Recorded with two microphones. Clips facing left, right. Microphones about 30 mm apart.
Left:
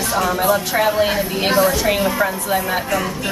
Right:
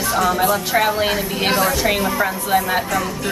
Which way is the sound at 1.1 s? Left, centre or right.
Centre.